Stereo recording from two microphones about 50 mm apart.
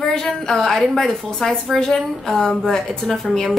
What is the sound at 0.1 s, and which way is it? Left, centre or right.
A woman's voice, centre.